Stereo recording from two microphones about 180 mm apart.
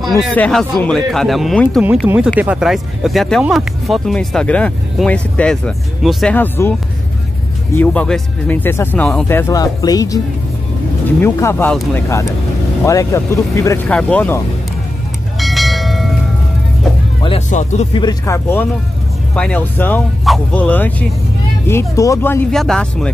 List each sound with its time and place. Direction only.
0.2 s speech: 5° left (ahead or behind)
1.8 s speech: 5° right (ahead or behind); by 6.7 s 10° left (ahead or behind)
7.7 s speech: 10° left (ahead or behind)
15.3 s bell: centre (ahead or behind)
17.5 s speech: 40° left (ahead or behind)
17.9 s speech: 20° left (ahead or behind); by 23.1 s 5° left (ahead or behind)